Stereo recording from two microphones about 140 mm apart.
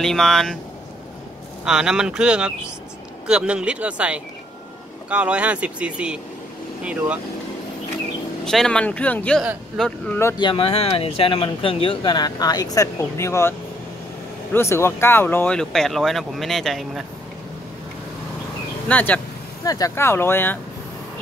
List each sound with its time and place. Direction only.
0.0 s speech: centre (ahead or behind)
1.6 s speech: 5° right (ahead or behind)
8.5 s speech: 5° left (ahead or behind)
10.4 s speech: 40° left (ahead or behind); by 17.0 s centre (ahead or behind)
18.9 s speech: 10° left (ahead or behind)
19.6 s speech: 25° left (ahead or behind)